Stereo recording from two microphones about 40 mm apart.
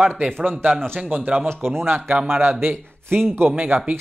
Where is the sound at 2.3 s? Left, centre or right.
Right.